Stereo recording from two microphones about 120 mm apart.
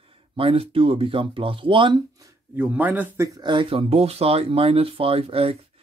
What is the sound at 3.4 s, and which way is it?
Speech, 45° right (ahead or behind).